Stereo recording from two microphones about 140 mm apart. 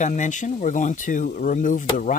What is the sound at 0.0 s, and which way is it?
Speech, 60° left (ahead or behind).